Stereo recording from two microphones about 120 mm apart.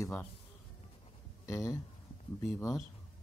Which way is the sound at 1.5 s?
25° left (ahead or behind).